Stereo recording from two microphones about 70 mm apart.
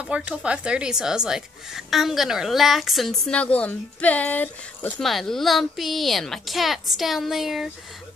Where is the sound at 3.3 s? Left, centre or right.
Centre.